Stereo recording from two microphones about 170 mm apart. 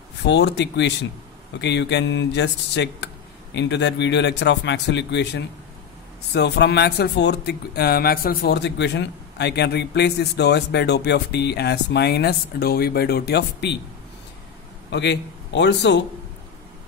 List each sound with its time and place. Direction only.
0.2 s speech: 90° left
14.9 s speech: 90° left